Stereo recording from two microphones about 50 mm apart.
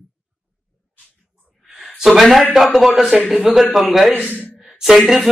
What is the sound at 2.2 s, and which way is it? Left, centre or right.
A man's voice, centre.